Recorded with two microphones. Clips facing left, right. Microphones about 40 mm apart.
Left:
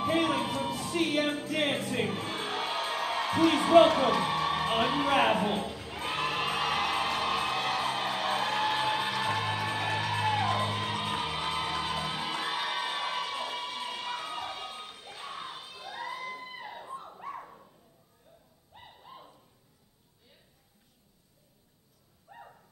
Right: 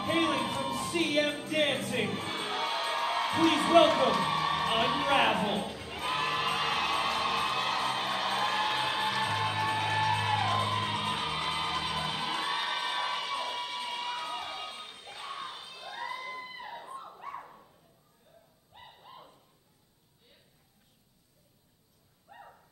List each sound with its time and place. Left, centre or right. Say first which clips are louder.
0.0 s music: left 1 dB; centre
0.4 s music: even; centre
1.5 s speech: right 3 dB; centre
2.3 s music: even; centre
15.3 s children shouting: even; centre
16.1 s a sound: left 1 dB; centre
16.5 s music: left 1 dB; centre
18.8 s a sound: left 1 dB; centre
22.3 s a sound: left 1 dB; centre